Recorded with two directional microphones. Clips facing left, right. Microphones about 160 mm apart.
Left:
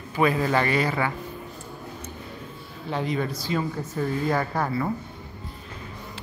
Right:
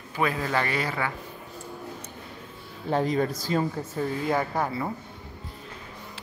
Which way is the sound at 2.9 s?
40° right (ahead or behind).